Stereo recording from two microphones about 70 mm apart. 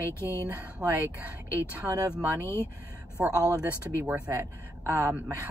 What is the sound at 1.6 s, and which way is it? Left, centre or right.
Speech, right.